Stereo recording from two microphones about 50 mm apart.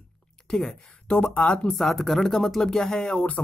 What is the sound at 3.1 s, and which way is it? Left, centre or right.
Speech, left.